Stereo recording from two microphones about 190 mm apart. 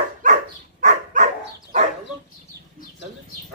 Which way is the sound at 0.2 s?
40° right (ahead or behind).